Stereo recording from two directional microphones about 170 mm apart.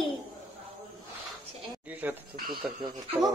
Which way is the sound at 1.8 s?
10° right (ahead or behind).